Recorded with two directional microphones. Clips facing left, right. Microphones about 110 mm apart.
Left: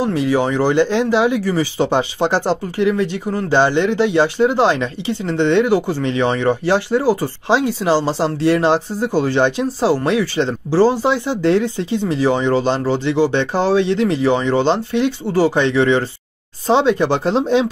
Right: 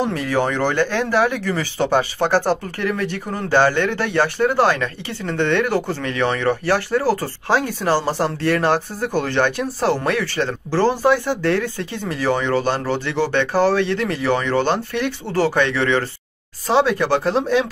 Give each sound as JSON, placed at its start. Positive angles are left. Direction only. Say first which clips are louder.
{"t": 0.0, "sound": "speech", "louder": "left 3 dB", "side_deg": 15}